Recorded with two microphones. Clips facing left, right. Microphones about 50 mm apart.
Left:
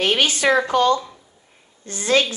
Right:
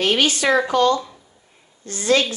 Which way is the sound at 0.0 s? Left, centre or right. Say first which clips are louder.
Even; centre.